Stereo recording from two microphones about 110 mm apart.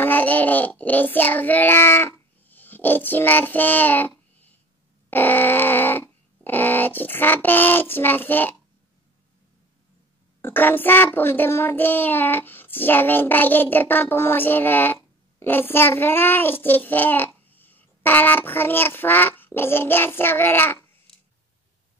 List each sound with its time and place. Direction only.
0.0 s child singing: 15° left (ahead or behind)
5.1 s a sound: 20° left (ahead or behind)
10.4 s child singing: 20° left (ahead or behind)